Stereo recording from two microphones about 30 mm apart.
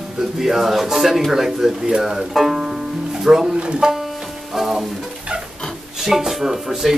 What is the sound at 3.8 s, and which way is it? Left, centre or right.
Music, right.